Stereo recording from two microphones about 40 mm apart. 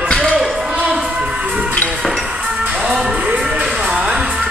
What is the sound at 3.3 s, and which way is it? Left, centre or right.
Music, right.